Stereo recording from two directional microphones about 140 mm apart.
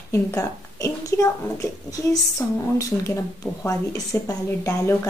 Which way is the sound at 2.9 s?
10° left (ahead or behind).